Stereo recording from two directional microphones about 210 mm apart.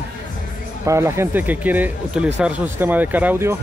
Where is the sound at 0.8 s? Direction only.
15° right (ahead or behind).